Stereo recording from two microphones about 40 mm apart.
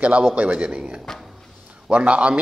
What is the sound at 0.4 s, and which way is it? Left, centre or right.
A man's voice, right.